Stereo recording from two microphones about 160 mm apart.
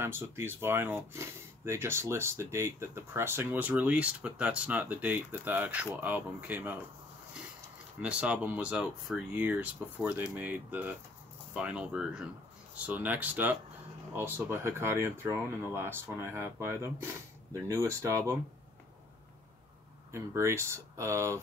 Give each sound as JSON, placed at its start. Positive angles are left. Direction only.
{"t": 0.0, "sound": "speech", "side_deg": -15}
{"t": 8.0, "sound": "speech", "side_deg": -10}
{"t": 20.1, "sound": "speech", "side_deg": -15}